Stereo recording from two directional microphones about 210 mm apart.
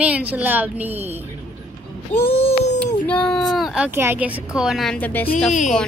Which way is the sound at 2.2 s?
25° left (ahead or behind).